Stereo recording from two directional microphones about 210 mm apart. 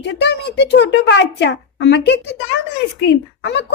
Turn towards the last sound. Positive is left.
turn(degrees=55)  # may be behind; listen again after turning